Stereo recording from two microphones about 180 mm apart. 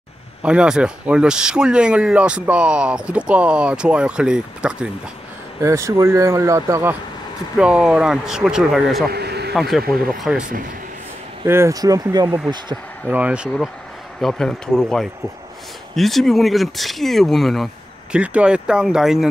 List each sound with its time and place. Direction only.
0.4 s speech: 5° right (ahead or behind)
5.6 s speech: 15° right (ahead or behind)
9.1 s a sound: 65° right (ahead or behind)
9.5 s speech: centre (ahead or behind)
11.4 s speech: 15° right (ahead or behind)
13.1 s speech: 5° right (ahead or behind)